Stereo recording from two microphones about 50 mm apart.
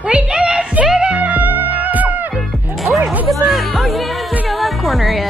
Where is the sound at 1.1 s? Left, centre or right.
Right.